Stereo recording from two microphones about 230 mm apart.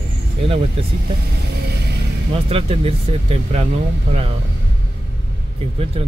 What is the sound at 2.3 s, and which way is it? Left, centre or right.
Speech, right.